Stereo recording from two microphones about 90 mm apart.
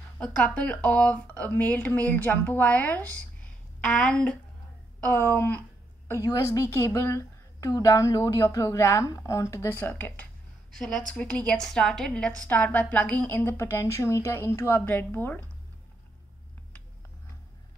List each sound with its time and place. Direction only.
0.2 s speech: 15° left (ahead or behind)
5.0 s a woman's voice: 25° left (ahead or behind)
6.2 s a woman's voice: 40° left (ahead or behind); by 10.2 s 20° left (ahead or behind)
10.7 s a woman's voice: 5° left (ahead or behind); by 15.4 s 20° left (ahead or behind)